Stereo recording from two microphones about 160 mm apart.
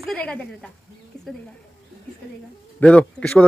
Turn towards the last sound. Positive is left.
turn(degrees=5)  # may be behind; listen again after turning